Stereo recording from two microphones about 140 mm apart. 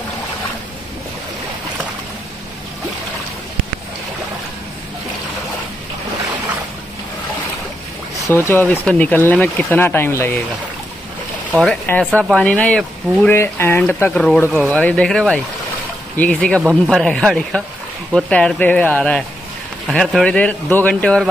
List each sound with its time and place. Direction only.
8.5 s speech: 15° left (ahead or behind)
11.5 s speech: 5° left (ahead or behind)